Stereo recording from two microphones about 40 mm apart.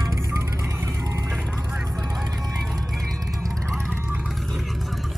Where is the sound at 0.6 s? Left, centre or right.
Right.